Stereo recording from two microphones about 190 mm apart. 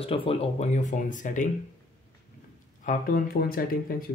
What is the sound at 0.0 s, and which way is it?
Speech, 30° left (ahead or behind).